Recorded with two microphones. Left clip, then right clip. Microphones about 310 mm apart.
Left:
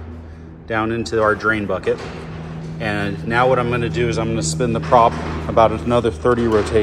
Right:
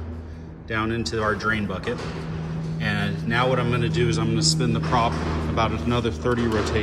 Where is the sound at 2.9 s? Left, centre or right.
Centre.